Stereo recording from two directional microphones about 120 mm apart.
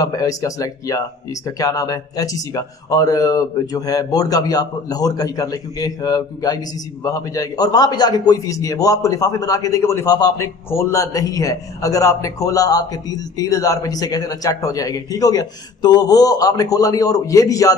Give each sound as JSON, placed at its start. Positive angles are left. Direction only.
{"t": 0.0, "sound": "speech", "side_deg": 30}